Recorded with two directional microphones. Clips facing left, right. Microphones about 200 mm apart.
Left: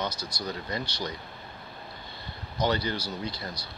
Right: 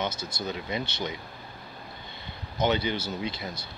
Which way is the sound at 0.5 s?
10° right (ahead or behind).